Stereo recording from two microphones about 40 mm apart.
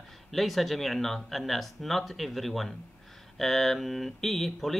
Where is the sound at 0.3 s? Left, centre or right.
Centre.